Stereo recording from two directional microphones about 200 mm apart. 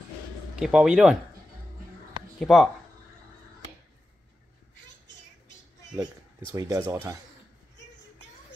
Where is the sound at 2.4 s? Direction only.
Centre (ahead or behind).